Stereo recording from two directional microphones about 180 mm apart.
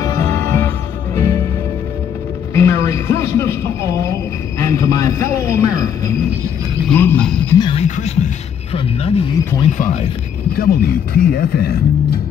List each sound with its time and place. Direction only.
0.0 s music: 15° left (ahead or behind)
2.5 s a man's voice: 15° left (ahead or behind)
7.5 s speech: 25° left (ahead or behind)
7.8 s music: 40° left (ahead or behind)
8.7 s a sound: 30° left (ahead or behind)
9.7 s speech: 45° left (ahead or behind)
10.5 s speech: 60° left (ahead or behind)